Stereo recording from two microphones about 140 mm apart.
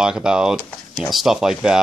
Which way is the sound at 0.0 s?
5° right (ahead or behind).